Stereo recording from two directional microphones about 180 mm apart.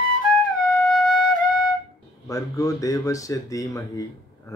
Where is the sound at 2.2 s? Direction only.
20° left (ahead or behind).